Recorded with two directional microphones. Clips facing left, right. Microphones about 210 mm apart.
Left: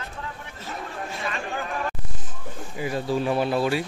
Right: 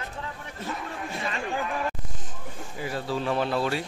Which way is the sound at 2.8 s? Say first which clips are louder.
Left 4 dB; 15° left (ahead or behind).